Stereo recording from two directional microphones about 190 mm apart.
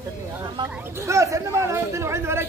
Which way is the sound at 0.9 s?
15° right (ahead or behind).